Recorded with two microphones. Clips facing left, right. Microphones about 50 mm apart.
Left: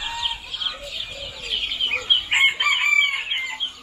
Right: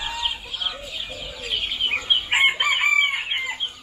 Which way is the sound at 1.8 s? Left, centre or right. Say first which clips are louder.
Even; centre.